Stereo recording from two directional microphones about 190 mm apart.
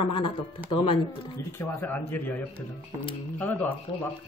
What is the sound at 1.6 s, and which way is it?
Speech, 10° left (ahead or behind).